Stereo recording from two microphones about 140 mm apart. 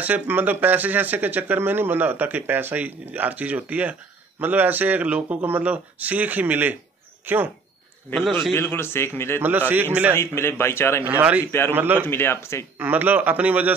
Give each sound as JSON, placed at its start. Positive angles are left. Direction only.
{"t": 0.0, "sound": "speech", "side_deg": -10}
{"t": 8.5, "sound": "a man's voice", "side_deg": 15}
{"t": 9.4, "sound": "speech", "side_deg": -10}
{"t": 10.1, "sound": "a man's voice", "side_deg": 20}
{"t": 11.1, "sound": "speech", "side_deg": -10}
{"t": 11.4, "sound": "a man's voice", "side_deg": 15}
{"t": 11.7, "sound": "speech", "side_deg": -15}
{"t": 12.1, "sound": "a man's voice", "side_deg": 15}
{"t": 12.7, "sound": "speech", "side_deg": -15}